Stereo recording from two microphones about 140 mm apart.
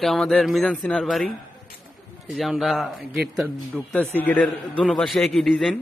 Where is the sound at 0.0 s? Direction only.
Centre (ahead or behind).